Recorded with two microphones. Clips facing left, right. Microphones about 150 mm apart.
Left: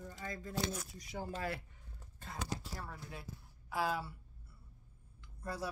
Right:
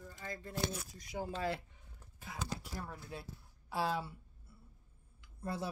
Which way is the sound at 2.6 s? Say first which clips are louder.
Right 1 dB; 20° right (ahead or behind).